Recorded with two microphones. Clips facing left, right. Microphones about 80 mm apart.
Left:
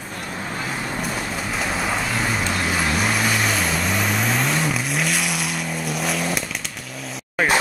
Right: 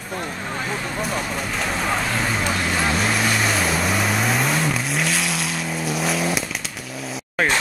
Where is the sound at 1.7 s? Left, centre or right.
Centre.